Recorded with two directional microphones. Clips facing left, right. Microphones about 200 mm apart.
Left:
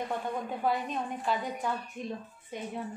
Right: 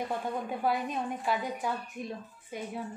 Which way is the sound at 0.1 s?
10° right (ahead or behind).